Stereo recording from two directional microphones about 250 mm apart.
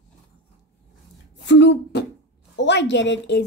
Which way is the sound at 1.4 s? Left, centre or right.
Left.